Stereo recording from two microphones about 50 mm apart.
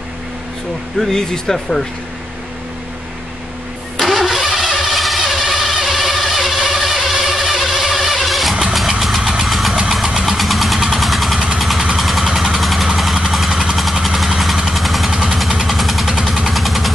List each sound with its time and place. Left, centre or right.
0.9 s speech: centre
4.0 s vehicle: centre
10.0 s engine: centre
10.8 s vehicle: centre
13.5 s vehicle: centre
13.9 s vehicle: centre